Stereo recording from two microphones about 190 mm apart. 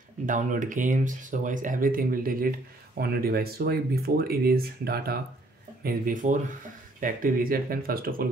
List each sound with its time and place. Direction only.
0.3 s speech: 45° right (ahead or behind)